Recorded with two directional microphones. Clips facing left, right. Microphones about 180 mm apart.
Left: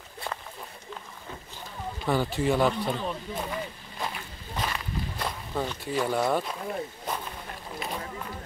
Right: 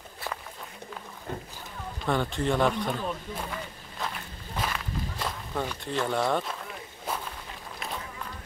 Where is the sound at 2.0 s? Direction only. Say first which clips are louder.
Left 2 dB; 5° left (ahead or behind).